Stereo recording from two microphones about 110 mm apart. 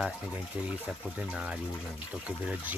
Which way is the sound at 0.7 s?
10° right (ahead or behind).